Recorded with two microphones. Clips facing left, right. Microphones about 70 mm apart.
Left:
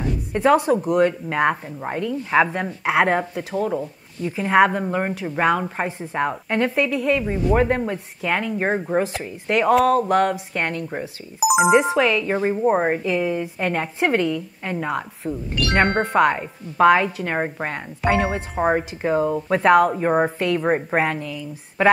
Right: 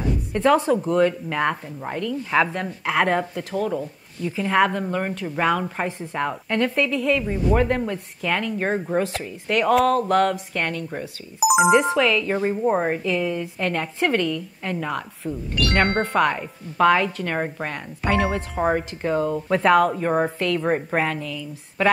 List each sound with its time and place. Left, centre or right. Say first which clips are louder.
0.3 s a woman's voice: left 2 dB; centre
11.3 s a woman's voice: left 1 dB; centre